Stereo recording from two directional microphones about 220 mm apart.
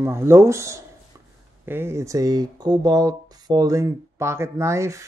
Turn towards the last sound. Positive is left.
turn(degrees=-15)  # may be behind; listen again after turning